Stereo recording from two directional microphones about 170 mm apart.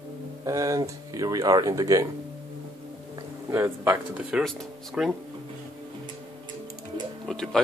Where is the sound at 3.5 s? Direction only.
15° right (ahead or behind).